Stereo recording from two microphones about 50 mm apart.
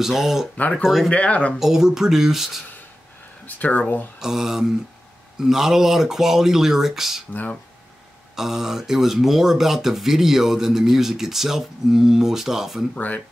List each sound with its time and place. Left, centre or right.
0.0 s speech: centre
0.6 s speech: left
0.8 s speech: centre
1.1 s speech: left
1.6 s speech: centre
3.4 s speech: left
4.2 s speech: centre
8.4 s speech: centre